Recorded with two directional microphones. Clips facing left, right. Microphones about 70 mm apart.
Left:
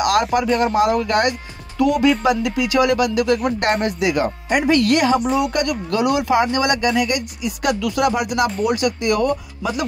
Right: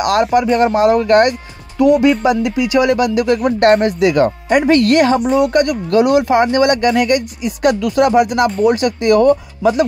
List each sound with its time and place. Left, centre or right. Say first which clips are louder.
0.0 s speech: right 4 dB; right
1.8 s speech: right 5 dB; right